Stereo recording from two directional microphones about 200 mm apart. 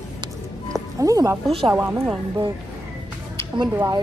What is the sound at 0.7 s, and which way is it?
Music, 15° right (ahead or behind).